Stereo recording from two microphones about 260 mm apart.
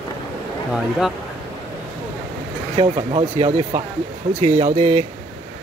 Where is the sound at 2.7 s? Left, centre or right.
Right.